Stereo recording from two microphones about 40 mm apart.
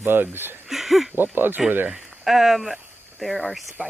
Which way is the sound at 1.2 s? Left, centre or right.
Right.